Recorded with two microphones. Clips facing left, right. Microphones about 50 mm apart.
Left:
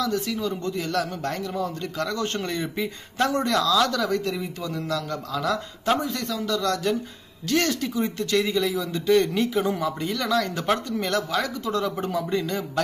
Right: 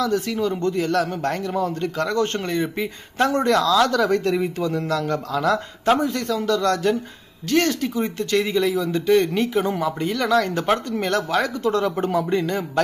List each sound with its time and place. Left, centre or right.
0.0 s speech: right